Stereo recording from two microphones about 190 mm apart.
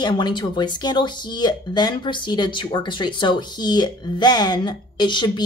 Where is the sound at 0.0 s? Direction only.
25° left (ahead or behind).